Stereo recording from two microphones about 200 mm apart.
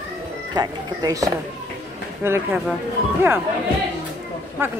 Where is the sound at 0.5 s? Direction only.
20° right (ahead or behind).